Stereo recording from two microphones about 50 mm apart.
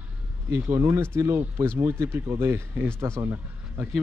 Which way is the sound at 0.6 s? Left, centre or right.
Right.